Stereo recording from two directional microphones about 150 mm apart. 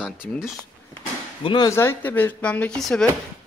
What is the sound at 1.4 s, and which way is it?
Speech, 30° left (ahead or behind).